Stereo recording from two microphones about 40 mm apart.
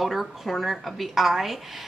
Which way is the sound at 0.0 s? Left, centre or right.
Centre.